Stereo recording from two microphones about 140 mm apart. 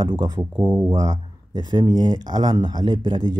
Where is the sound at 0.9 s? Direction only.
30° right (ahead or behind).